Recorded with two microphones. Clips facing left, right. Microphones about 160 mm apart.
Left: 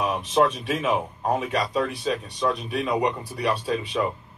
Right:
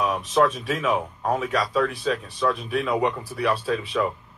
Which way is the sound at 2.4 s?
25° left (ahead or behind).